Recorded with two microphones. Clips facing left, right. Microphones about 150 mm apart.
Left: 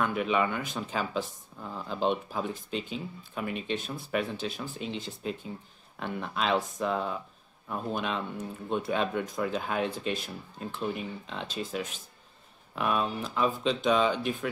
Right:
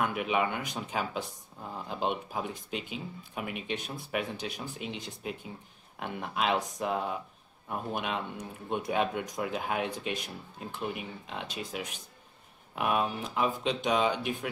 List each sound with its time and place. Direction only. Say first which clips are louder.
0.0 s speech: left 2 dB; 15° right (ahead or behind)